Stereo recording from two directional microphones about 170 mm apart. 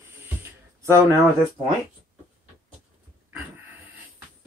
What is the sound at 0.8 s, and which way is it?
Speech, 15° right (ahead or behind).